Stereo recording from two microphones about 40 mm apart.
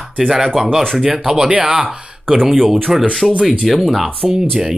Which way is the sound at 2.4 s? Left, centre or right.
Centre.